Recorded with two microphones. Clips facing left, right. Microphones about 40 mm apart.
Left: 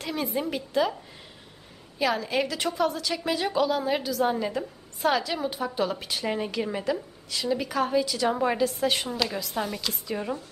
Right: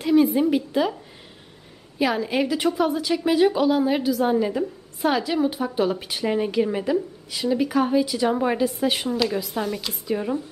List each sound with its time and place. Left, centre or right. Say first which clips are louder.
0.0 s a woman's voice: right 11 dB; centre
2.0 s a woman's voice: right 3 dB; centre